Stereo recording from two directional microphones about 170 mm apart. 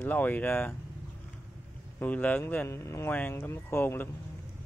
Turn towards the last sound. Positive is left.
turn(degrees=15)  # may be behind; listen again after turning